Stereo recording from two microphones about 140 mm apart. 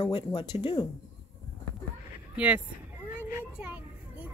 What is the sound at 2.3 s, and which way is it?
Speech, 10° right (ahead or behind).